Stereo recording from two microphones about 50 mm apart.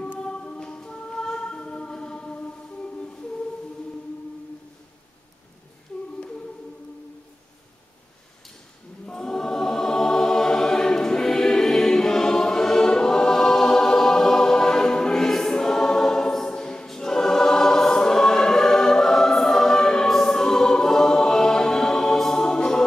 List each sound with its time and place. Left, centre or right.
0.2 s choir: centre
9.0 s choir: centre